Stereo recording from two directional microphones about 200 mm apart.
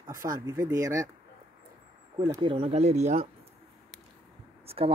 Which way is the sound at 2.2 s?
20° right (ahead or behind).